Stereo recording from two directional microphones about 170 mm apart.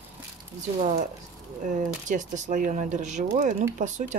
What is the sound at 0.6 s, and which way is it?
Speech, 45° right (ahead or behind).